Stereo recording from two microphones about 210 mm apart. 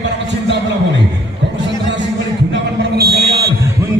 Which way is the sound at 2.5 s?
50° right (ahead or behind).